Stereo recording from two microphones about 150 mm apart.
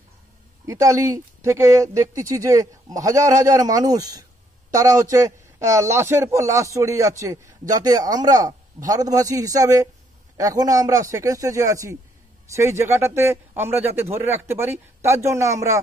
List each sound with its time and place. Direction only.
0.7 s a man's voice: 20° right (ahead or behind)